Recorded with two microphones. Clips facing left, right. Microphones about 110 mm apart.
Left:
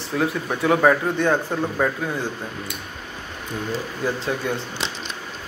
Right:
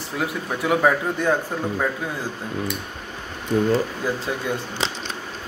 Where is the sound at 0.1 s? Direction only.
10° right (ahead or behind).